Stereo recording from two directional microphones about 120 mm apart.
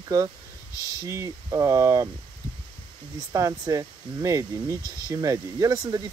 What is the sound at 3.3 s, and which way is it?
Speech, 30° right (ahead or behind).